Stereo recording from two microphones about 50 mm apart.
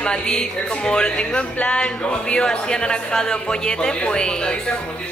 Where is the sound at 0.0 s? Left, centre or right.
Centre.